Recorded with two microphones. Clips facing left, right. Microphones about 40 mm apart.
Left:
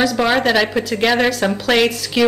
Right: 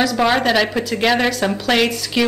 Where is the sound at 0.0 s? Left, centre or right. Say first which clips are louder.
Even; centre.